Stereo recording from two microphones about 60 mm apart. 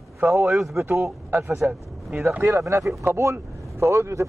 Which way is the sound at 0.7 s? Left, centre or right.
Right.